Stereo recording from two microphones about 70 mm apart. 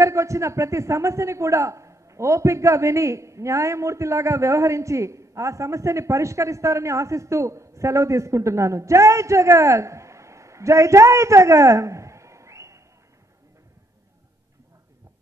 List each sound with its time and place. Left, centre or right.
0.0 s a man's voice: right